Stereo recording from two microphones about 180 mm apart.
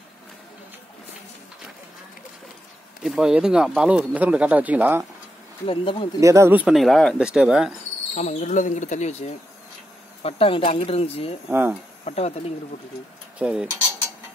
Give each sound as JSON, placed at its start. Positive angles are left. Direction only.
{"t": 3.0, "sound": "speech", "side_deg": -5}
{"t": 5.7, "sound": "speech", "side_deg": 30}
{"t": 6.2, "sound": "speech", "side_deg": -15}
{"t": 8.1, "sound": "speech", "side_deg": 40}
{"t": 11.5, "sound": "speech", "side_deg": -10}
{"t": 12.0, "sound": "speech", "side_deg": 35}
{"t": 13.4, "sound": "cutlery", "side_deg": -5}